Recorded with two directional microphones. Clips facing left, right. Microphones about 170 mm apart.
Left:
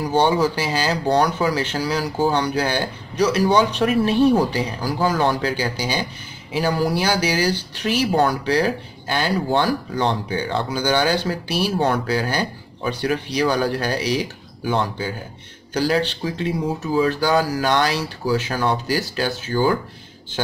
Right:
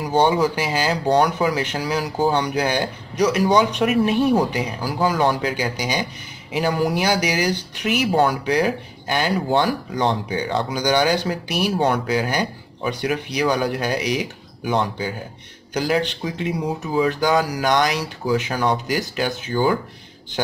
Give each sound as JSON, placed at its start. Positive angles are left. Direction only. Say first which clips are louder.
{"t": 0.0, "sound": "speech", "louder": "even", "side_deg": -10}